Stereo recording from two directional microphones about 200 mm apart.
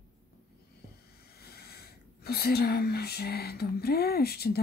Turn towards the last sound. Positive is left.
turn(degrees=50)  # may be behind; listen again after turning